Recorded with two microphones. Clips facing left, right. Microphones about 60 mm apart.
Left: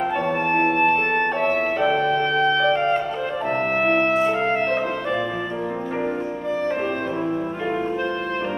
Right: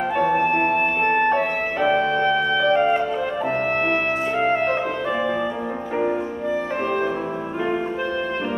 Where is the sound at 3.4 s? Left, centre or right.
Centre.